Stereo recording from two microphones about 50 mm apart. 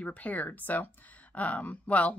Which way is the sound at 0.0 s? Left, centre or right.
Left.